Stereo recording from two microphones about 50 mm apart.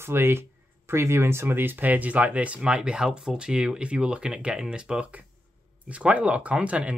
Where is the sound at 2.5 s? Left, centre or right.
Centre.